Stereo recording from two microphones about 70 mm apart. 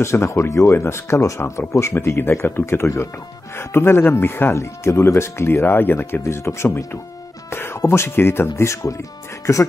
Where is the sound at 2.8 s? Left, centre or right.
Left.